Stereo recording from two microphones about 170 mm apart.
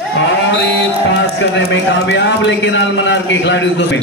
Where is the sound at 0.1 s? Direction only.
90° left.